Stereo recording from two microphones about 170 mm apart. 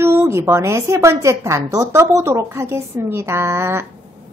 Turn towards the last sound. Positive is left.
turn(degrees=-15)  # may be behind; listen again after turning